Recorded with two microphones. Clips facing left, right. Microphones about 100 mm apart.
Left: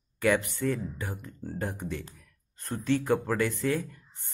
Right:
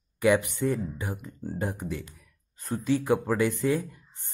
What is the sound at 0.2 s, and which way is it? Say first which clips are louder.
Speech: right 3 dB; 15° right (ahead or behind).